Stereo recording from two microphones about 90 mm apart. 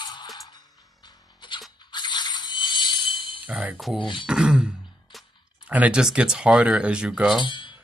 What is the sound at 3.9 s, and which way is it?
Speech, 65° left (ahead or behind).